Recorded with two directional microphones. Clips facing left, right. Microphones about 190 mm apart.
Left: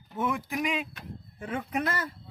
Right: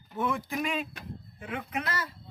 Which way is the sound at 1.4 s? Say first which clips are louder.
Left 4 dB; 45° left (ahead or behind).